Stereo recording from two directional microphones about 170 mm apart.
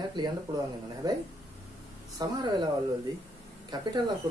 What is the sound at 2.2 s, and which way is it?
Speech, 25° right (ahead or behind).